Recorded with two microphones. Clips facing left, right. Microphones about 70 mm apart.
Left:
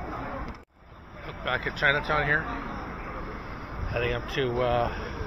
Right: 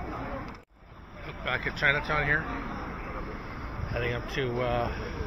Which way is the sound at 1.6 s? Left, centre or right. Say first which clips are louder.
Left 2 dB; left.